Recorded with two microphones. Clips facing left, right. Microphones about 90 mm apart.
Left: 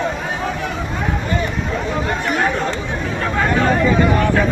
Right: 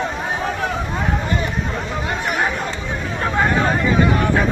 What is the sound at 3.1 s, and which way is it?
Speech, 25° right (ahead or behind).